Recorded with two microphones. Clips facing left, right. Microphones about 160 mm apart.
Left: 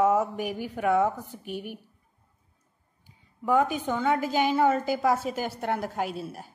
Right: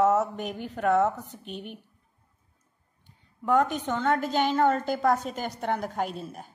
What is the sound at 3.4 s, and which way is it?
A woman's voice, 5° left (ahead or behind).